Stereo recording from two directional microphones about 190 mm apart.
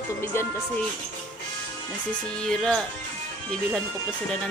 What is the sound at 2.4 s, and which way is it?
Speech, 5° left (ahead or behind).